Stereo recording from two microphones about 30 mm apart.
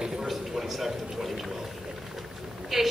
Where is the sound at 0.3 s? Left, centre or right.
Centre.